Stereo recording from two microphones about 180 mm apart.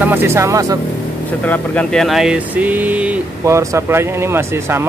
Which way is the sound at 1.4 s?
5° left (ahead or behind).